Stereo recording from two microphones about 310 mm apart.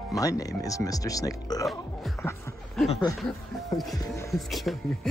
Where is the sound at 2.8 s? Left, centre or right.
Centre.